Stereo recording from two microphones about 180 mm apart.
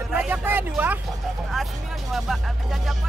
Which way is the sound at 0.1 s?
10° right (ahead or behind).